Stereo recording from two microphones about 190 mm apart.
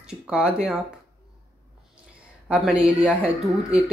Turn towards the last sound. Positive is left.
turn(degrees=0)  # may be behind; listen again after turning